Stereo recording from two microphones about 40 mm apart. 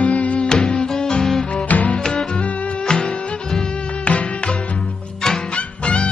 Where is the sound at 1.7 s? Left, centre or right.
Left.